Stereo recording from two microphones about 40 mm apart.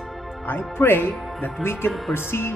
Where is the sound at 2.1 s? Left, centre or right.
Left.